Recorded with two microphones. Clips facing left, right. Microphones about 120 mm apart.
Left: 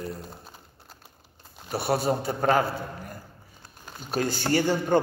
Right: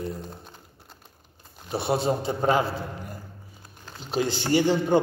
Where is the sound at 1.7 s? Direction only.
25° right (ahead or behind).